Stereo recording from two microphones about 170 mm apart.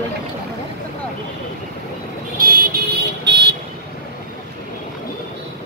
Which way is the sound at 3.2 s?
80° right.